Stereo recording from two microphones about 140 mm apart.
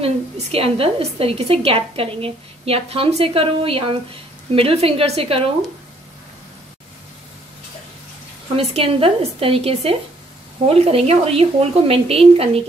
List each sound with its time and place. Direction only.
0.0 s a woman's voice: 45° right (ahead or behind)
8.5 s a woman's voice: 45° right (ahead or behind)